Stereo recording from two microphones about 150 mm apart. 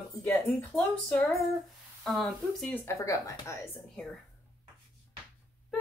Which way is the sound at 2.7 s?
15° left (ahead or behind).